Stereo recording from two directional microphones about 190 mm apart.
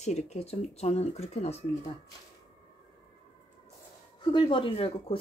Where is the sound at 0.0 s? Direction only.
35° left (ahead or behind).